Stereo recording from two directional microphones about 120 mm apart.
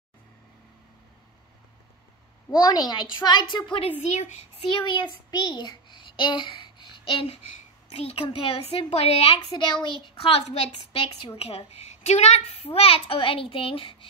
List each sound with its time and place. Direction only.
2.7 s a woman's voice: 35° left (ahead or behind)
4.1 s a child's voice: 80° left
4.6 s a child's voice: 45° left (ahead or behind)
9.5 s a woman's voice: 40° left (ahead or behind)